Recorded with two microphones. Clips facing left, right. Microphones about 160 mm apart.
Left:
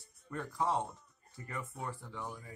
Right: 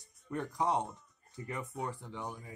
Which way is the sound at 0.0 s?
20° right (ahead or behind).